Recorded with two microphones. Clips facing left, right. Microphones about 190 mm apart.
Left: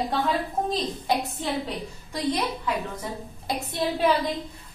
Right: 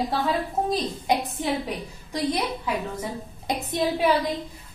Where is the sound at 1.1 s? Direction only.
15° right (ahead or behind).